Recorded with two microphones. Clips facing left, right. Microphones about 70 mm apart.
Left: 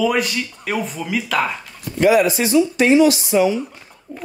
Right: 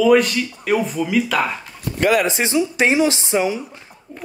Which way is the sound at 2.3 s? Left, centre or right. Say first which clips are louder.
Left 3 dB; right.